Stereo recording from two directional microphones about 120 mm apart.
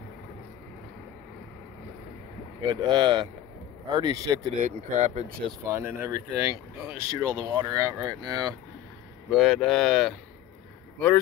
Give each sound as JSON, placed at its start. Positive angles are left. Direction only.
{"t": 2.6, "sound": "speech", "side_deg": -35}
{"t": 4.6, "sound": "speech", "side_deg": -90}
{"t": 5.7, "sound": "speech", "side_deg": -20}
{"t": 9.3, "sound": "speech", "side_deg": 0}